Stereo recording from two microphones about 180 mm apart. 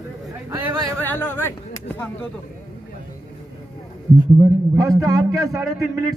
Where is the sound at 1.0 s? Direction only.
10° left (ahead or behind).